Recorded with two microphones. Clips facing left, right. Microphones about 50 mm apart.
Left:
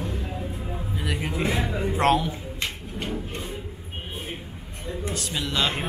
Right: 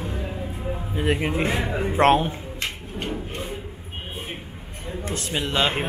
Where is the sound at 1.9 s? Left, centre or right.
Right.